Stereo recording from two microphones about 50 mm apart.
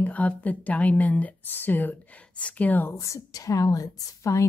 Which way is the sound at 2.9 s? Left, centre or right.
Left.